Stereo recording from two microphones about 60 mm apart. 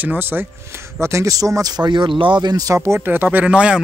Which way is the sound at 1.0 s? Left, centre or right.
Right.